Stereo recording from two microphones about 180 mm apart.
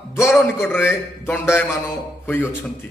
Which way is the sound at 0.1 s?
15° left (ahead or behind).